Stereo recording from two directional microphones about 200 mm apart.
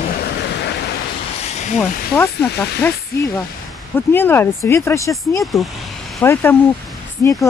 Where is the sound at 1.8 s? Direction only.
10° left (ahead or behind).